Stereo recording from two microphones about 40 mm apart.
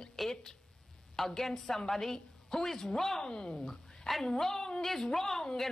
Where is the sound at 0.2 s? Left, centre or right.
Centre.